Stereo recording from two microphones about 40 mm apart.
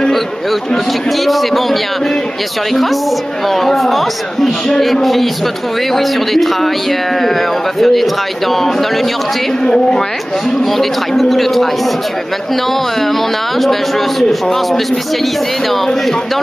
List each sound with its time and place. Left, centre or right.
1.2 s speech: centre
9.7 s a woman's voice: centre
10.6 s speech: centre
13.6 s speech: centre
15.7 s speech: centre